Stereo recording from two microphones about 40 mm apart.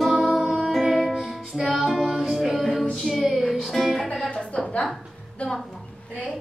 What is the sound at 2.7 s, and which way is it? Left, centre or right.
Music, centre.